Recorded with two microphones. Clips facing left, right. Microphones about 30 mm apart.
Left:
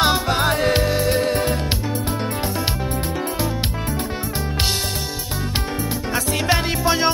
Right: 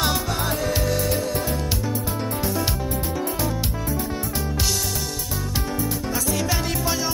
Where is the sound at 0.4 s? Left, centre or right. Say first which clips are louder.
Left 6 dB; left.